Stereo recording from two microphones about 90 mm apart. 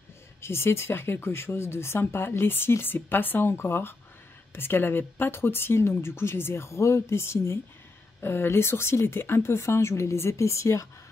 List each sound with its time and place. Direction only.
0.4 s speech: 30° left (ahead or behind)